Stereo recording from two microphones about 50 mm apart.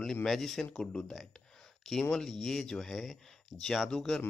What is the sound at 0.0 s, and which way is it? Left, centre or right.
Speech, centre.